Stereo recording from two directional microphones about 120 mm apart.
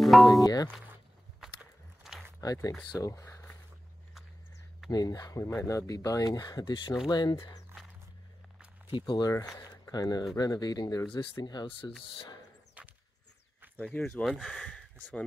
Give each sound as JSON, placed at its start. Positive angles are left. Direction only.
{"t": 0.0, "sound": "speech", "side_deg": 0}
{"t": 0.4, "sound": "speech", "side_deg": 30}
{"t": 1.4, "sound": "walk", "side_deg": -5}
{"t": 2.0, "sound": "a sound", "side_deg": -5}
{"t": 2.4, "sound": "speech", "side_deg": 30}
{"t": 4.9, "sound": "speech", "side_deg": 35}
{"t": 8.9, "sound": "speech", "side_deg": 35}
{"t": 11.1, "sound": "speech", "side_deg": 45}
{"t": 12.8, "sound": "walk", "side_deg": -10}
{"t": 13.8, "sound": "speech", "side_deg": 10}